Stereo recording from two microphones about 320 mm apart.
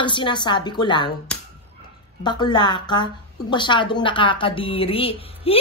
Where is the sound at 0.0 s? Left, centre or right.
Centre.